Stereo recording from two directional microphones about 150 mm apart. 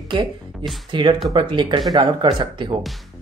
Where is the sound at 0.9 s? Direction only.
35° right (ahead or behind).